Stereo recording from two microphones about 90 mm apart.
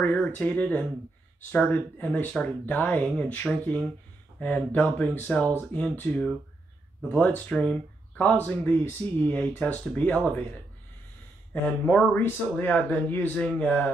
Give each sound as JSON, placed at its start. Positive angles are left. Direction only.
{"t": 0.1, "sound": "speech", "side_deg": 15}
{"t": 11.9, "sound": "a man's voice", "side_deg": 20}